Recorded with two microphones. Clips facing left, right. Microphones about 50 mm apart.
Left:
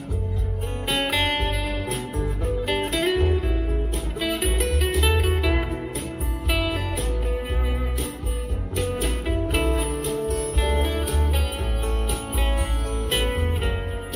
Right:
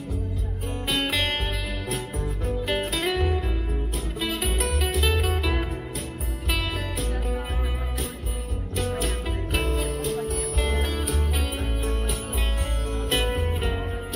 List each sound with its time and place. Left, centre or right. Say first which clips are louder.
0.8 s music: left 2 dB; centre
2.1 s music: left 3 dB; left
2.9 s music: left 3 dB; centre
9.3 s music: left 8 dB; centre
13.3 s music: left 1 dB; centre